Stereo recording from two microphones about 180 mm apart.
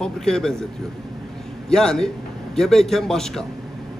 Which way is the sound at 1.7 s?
5° left (ahead or behind).